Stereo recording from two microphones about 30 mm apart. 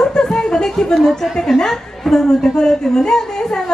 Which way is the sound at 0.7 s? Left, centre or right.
Centre.